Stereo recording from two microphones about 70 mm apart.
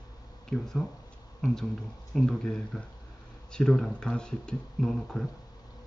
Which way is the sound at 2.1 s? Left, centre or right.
Centre.